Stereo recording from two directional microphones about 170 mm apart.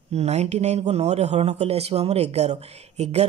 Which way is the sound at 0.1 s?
40° right (ahead or behind).